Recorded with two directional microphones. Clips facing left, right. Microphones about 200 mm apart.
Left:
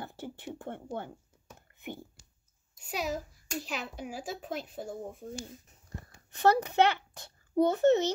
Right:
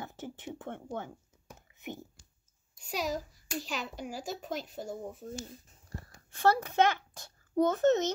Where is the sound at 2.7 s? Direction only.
5° left (ahead or behind).